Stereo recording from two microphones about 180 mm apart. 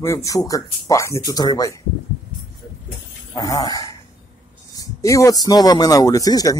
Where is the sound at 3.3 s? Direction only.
20° left (ahead or behind).